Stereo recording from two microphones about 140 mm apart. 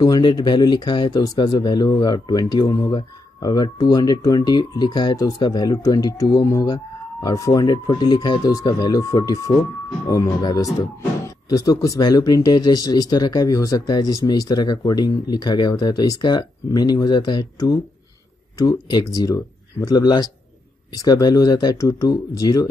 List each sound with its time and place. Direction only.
0.0 s speech: 30° left (ahead or behind)